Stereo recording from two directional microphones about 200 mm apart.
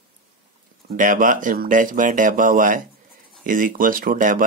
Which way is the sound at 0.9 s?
40° right (ahead or behind).